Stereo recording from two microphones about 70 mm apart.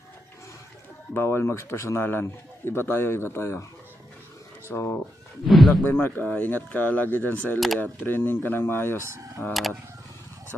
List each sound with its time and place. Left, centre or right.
1.1 s a man's voice: left
4.6 s speech: left
5.5 s a sound: centre
5.9 s a man's voice: left
9.5 s speech: centre